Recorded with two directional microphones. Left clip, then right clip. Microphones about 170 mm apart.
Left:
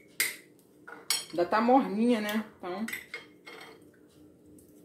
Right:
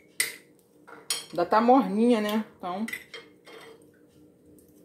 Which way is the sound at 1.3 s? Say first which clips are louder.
Right 4 dB; 60° right (ahead or behind).